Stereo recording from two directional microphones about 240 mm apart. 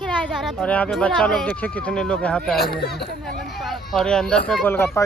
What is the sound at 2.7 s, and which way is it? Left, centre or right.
Speech, left.